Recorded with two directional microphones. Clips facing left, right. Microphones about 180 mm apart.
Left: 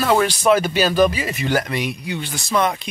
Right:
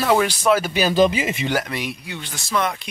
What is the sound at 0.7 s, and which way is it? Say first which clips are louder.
Speech: even; 20° right (ahead or behind).